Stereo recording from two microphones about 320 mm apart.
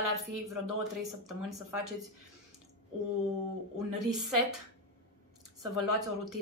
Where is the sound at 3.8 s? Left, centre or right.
Right.